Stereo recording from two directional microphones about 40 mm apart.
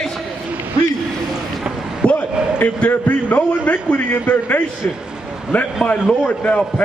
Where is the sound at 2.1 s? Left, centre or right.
Left.